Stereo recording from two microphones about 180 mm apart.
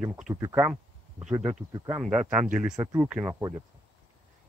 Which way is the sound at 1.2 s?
35° right (ahead or behind).